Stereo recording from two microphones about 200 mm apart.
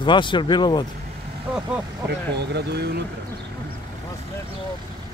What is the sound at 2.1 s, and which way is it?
Speech, 55° right (ahead or behind).